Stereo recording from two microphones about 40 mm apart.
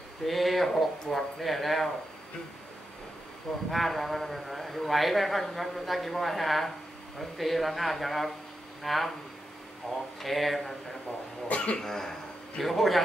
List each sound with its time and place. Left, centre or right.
0.3 s a man's voice: centre
3.7 s a man's voice: centre
10.2 s a man's voice: centre
11.4 s cough: left
11.7 s a man's voice: centre